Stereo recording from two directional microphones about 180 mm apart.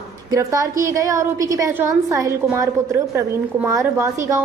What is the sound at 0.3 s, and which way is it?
A woman's voice, 20° right (ahead or behind).